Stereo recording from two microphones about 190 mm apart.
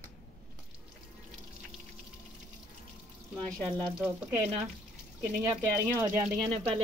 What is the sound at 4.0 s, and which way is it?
Speech, 10° right (ahead or behind).